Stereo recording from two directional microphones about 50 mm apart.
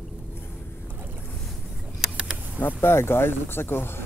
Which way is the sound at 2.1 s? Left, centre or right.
Centre.